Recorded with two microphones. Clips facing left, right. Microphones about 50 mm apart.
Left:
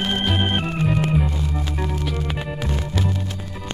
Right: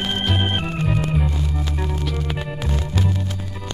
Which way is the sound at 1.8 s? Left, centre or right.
Centre.